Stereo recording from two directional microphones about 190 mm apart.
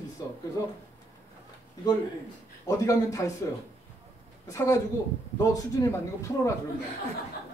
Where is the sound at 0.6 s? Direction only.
15° left (ahead or behind).